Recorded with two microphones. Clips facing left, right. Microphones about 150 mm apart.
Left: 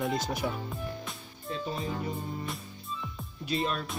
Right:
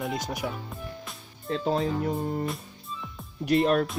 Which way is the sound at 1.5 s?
85° right.